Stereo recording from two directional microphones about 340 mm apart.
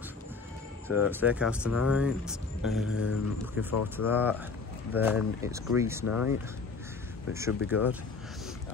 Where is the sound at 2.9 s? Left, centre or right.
Left.